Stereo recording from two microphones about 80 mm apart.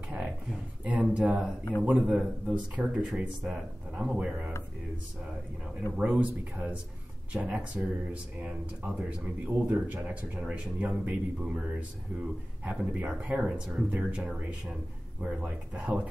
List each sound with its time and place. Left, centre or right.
0.8 s speech: centre
5.9 s speech: centre